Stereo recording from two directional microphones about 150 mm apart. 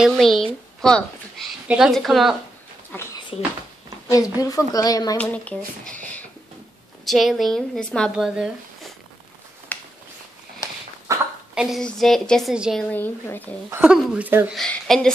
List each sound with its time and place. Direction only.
0.0 s a woman's voice: centre (ahead or behind)
2.9 s a woman's voice: 15° left (ahead or behind)
5.1 s a woman's voice: 10° left (ahead or behind)
7.1 s speech: centre (ahead or behind)
9.7 s a sound: 10° left (ahead or behind)
11.1 s a sound: 20° right (ahead or behind)
11.5 s speech: 5° right (ahead or behind)
12.9 s a woman's voice: 10° left (ahead or behind)
13.7 s speech: 10° right (ahead or behind)
14.5 s speech: 5° left (ahead or behind)